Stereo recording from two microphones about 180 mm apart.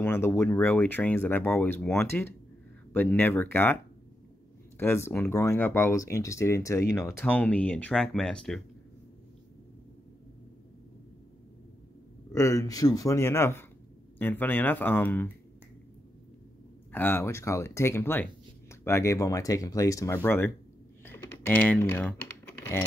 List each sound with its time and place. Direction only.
0.0 s speech: 15° left (ahead or behind)
12.3 s speech: 15° left (ahead or behind)
16.9 s speech: 10° left (ahead or behind)
21.0 s typing: 10° left (ahead or behind)